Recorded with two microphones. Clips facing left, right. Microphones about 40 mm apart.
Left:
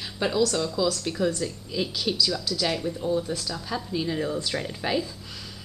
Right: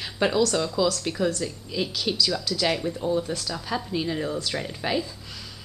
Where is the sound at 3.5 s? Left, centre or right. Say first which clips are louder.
Right 2 dB; centre.